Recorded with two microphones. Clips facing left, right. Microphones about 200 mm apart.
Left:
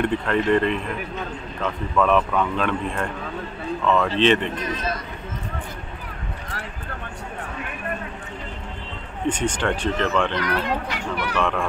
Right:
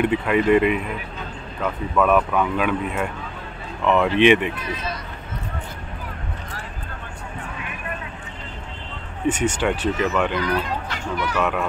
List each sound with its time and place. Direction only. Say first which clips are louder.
0.0 s speech: right 2 dB; 10° right (ahead or behind)
9.3 s speech: right 2 dB; 5° right (ahead or behind)
10.3 s speech: even; 70° left (ahead or behind)
11.3 s speech: even; 5° right (ahead or behind)